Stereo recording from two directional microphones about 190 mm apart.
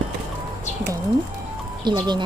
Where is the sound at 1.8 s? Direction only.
25° right (ahead or behind).